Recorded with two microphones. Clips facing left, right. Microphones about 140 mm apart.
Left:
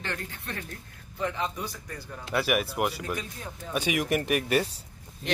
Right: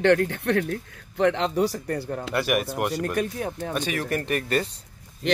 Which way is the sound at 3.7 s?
10° left (ahead or behind).